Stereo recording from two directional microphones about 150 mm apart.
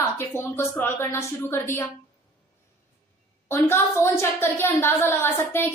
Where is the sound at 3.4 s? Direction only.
15° left (ahead or behind).